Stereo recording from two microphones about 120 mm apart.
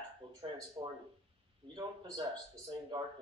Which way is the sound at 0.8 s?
35° right (ahead or behind).